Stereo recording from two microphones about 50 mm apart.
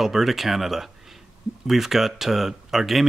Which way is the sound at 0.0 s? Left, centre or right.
Centre.